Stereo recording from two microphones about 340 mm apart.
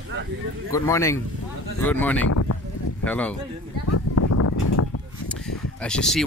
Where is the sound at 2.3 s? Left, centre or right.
Left.